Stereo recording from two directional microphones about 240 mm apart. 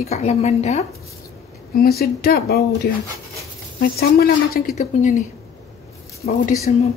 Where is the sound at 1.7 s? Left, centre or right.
Left.